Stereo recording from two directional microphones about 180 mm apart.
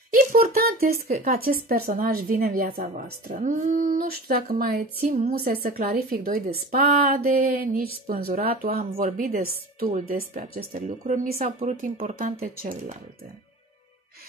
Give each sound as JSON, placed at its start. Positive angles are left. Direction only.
{"t": 0.1, "sound": "a woman's voice", "side_deg": -55}